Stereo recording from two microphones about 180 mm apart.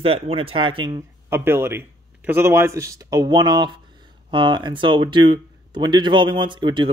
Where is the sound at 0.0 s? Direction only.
30° right (ahead or behind).